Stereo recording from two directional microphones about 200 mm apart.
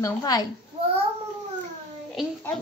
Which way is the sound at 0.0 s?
20° left (ahead or behind).